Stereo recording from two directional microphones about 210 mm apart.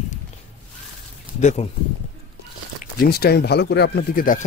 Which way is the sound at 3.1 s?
50° left (ahead or behind).